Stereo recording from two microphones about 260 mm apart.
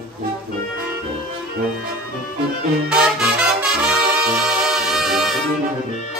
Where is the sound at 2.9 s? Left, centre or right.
Centre.